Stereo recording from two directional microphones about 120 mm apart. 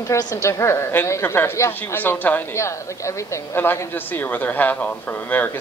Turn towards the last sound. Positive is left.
turn(degrees=15)  # may be behind; listen again after turning